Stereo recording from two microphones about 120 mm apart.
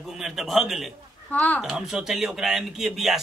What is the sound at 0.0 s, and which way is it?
A man's voice, centre (ahead or behind).